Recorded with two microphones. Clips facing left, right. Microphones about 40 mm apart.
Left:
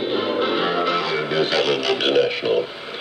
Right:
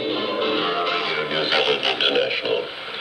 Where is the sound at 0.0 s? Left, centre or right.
Centre.